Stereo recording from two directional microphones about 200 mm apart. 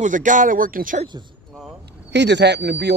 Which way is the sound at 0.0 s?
40° right (ahead or behind).